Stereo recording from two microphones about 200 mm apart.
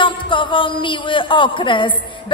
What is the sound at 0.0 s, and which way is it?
A man's voice, 25° left (ahead or behind).